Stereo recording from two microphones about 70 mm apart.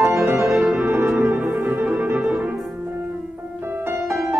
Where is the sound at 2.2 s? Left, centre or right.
Centre.